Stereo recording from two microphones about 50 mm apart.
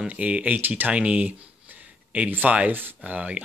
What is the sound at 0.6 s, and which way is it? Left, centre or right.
Speech, right.